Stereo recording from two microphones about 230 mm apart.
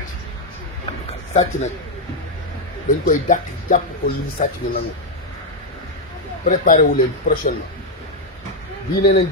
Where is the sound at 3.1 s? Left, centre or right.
Left.